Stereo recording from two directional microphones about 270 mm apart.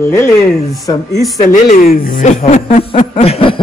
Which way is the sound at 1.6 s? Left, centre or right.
Left.